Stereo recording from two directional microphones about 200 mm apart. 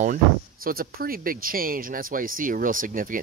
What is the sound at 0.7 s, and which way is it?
Speech, 45° right (ahead or behind).